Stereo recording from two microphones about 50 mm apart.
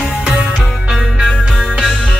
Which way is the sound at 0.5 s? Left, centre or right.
Centre.